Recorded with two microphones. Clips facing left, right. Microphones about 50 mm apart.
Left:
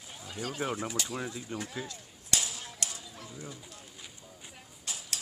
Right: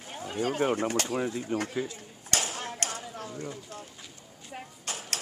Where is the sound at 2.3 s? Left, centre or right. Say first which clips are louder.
Right 4 dB; right.